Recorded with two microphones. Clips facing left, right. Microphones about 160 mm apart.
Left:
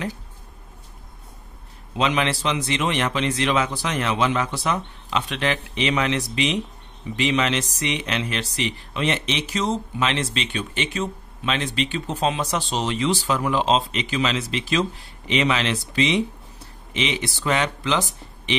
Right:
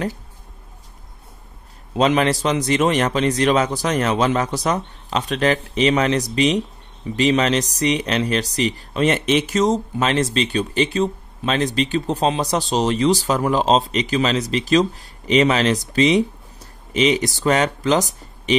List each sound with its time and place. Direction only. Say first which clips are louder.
2.0 s speech: right 5 dB; 40° right (ahead or behind)